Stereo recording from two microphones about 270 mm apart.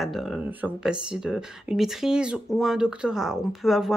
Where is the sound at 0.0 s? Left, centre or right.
Centre.